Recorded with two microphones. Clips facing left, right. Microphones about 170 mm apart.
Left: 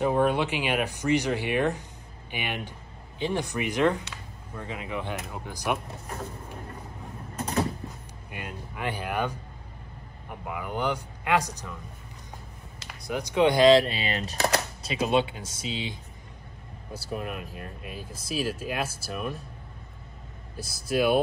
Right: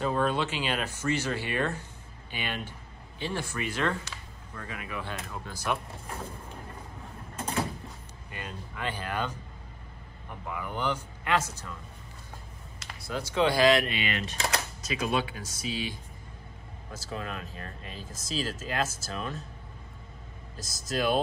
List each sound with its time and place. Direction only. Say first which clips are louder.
0.0 s speech: left 4 dB; 15° left (ahead or behind)
8.3 s speech: left 2 dB; 10° left (ahead or behind)
10.4 s speech: left 3 dB; 15° left (ahead or behind)
13.0 s speech: left 4 dB; 15° left (ahead or behind)
16.9 s speech: left 3 dB; 10° left (ahead or behind)
20.7 s speech: left 4 dB; 10° left (ahead or behind)